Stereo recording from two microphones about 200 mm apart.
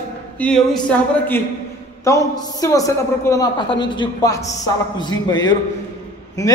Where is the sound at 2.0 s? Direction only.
15° left (ahead or behind).